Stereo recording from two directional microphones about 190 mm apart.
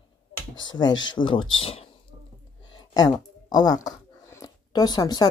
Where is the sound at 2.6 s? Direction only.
25° left (ahead or behind).